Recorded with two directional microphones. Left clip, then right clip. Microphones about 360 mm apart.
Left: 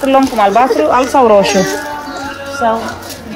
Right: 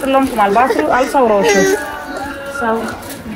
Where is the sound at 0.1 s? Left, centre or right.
Left.